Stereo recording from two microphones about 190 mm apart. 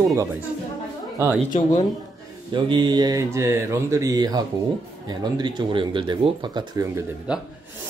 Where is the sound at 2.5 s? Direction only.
25° right (ahead or behind).